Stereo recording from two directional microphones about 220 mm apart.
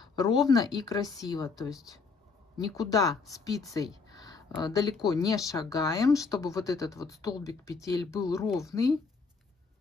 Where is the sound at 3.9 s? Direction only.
15° left (ahead or behind).